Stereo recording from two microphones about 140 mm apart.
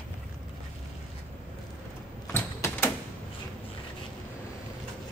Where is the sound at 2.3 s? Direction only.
15° left (ahead or behind).